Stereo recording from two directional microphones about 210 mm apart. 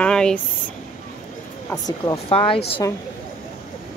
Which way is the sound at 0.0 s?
5° left (ahead or behind).